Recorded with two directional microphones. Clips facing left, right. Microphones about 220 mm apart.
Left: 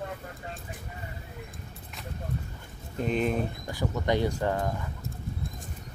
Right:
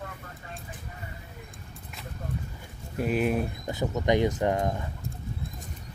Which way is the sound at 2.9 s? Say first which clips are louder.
Right 1 dB; 5° right (ahead or behind).